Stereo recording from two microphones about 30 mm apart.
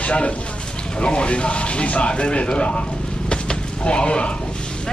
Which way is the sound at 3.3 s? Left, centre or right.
Left.